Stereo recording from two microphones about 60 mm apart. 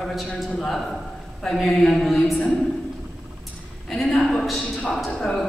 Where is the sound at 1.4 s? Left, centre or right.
Centre.